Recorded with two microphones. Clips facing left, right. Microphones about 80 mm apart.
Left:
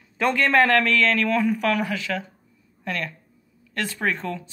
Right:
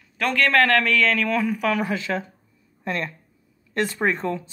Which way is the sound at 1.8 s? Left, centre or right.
Right.